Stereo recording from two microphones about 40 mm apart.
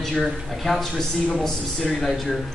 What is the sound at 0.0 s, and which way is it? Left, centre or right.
Speech, centre.